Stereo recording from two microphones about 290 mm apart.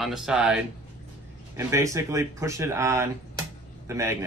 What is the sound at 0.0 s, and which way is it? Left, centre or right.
Speech, centre.